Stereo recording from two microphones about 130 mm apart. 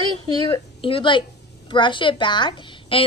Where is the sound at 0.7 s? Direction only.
45° left (ahead or behind).